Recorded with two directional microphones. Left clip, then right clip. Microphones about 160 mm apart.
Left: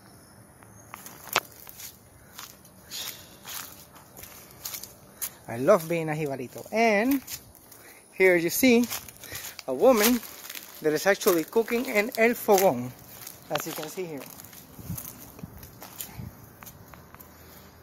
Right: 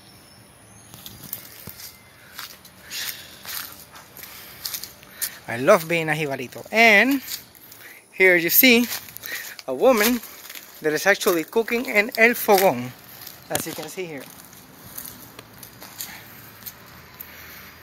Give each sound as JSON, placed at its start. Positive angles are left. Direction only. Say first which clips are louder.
{"t": 4.6, "sound": "a sound", "louder": "right 7 dB", "side_deg": 0}
{"t": 5.2, "sound": "speech", "louder": "right 5 dB", "side_deg": 0}
{"t": 8.2, "sound": "speech", "louder": "right 5 dB", "side_deg": 10}